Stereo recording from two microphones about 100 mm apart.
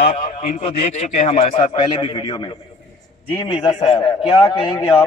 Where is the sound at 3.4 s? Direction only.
65° left (ahead or behind).